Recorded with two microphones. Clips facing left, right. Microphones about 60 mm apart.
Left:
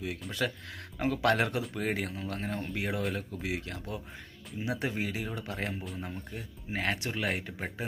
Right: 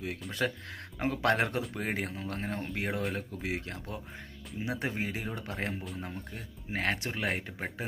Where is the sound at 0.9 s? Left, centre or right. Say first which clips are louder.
Left 1 dB; right.